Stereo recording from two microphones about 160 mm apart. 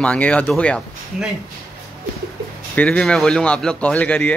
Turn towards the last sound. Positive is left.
turn(degrees=10)  # may be behind; listen again after turning